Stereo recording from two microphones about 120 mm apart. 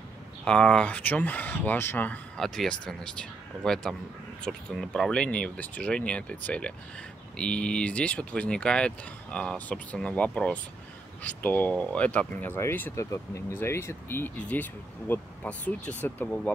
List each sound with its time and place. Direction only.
0.5 s speech: 10° left (ahead or behind)
2.3 s speech: 5° left (ahead or behind)